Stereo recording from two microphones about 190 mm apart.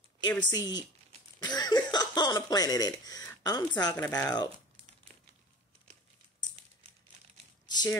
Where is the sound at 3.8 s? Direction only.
15° left (ahead or behind).